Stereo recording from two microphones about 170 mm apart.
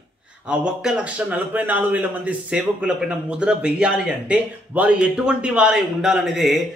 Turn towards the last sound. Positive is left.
turn(degrees=0)  # may be behind; listen again after turning